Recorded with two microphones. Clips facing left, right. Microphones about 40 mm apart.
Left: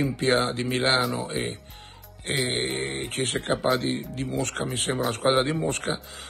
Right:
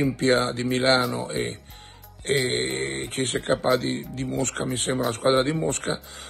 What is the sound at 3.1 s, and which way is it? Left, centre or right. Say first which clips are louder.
Speech: right 1 dB; left.